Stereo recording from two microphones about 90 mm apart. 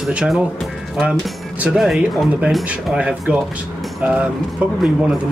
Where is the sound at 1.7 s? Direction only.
15° right (ahead or behind).